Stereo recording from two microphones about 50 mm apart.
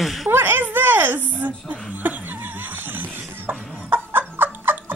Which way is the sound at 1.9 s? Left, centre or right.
Right.